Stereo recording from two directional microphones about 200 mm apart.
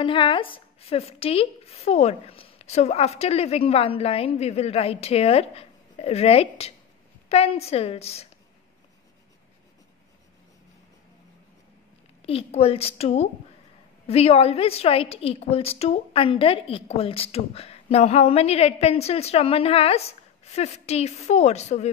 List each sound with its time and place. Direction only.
0.0 s a woman's voice: 25° left (ahead or behind)
12.2 s a woman's voice: 30° left (ahead or behind)